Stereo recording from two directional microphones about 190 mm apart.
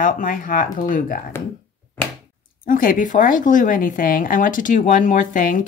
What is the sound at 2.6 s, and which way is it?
A woman's voice, 45° left (ahead or behind).